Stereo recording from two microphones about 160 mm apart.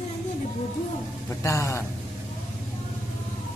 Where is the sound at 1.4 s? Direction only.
20° left (ahead or behind).